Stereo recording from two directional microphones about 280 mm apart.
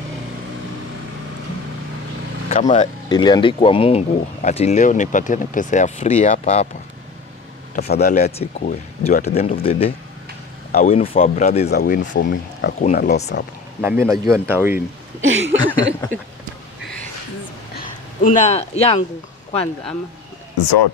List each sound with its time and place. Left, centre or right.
2.5 s speech: left
7.7 s speech: left
13.7 s speech: centre
15.2 s a sound: right
17.7 s speech: left